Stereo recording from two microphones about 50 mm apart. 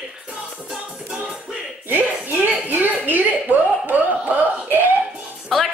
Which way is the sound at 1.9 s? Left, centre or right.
Right.